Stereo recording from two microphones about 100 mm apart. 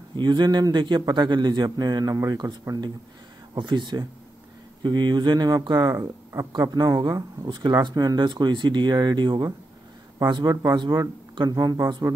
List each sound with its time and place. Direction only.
0.1 s speech: 50° right (ahead or behind)
3.5 s speech: 50° right (ahead or behind)